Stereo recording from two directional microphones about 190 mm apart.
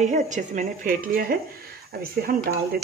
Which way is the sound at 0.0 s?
40° right (ahead or behind).